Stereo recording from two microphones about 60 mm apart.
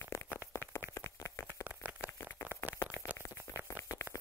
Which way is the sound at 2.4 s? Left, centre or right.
Left.